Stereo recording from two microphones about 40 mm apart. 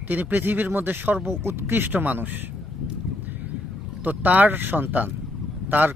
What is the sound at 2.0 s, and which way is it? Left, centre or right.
Speech, right.